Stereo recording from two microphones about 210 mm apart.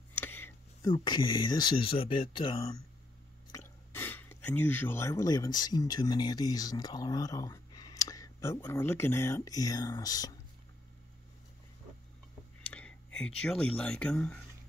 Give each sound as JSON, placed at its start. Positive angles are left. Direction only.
{"t": 0.1, "sound": "a sound", "side_deg": 10}
{"t": 0.9, "sound": "speech", "side_deg": 20}
{"t": 3.5, "sound": "speech", "side_deg": 10}
{"t": 12.7, "sound": "speech", "side_deg": 5}